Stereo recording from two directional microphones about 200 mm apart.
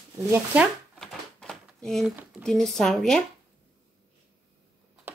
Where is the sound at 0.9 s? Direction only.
Centre (ahead or behind).